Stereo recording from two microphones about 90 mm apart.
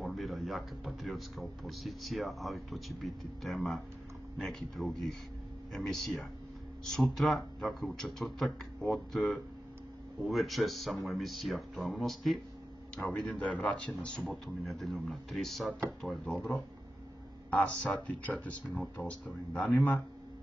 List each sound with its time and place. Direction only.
0.0 s a man's voice: centre (ahead or behind)
17.5 s a man's voice: 15° left (ahead or behind)